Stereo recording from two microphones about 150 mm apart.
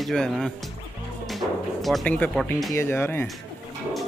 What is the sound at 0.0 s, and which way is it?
Speech, centre (ahead or behind).